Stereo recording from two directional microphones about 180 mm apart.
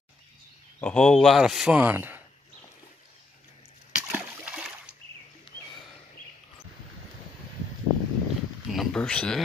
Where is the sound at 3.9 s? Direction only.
5° right (ahead or behind).